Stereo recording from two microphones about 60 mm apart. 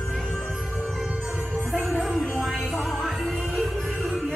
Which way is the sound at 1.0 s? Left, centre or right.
Centre.